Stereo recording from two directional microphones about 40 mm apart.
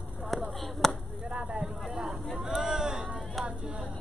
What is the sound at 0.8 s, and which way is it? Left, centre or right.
Chop, centre.